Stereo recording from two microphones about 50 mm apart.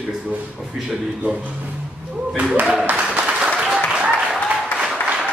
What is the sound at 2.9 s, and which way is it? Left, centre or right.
Applause, right.